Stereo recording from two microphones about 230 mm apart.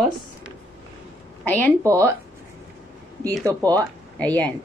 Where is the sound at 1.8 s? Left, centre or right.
Centre.